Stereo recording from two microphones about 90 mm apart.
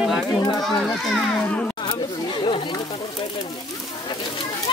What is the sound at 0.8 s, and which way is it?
Speech, 5° left (ahead or behind).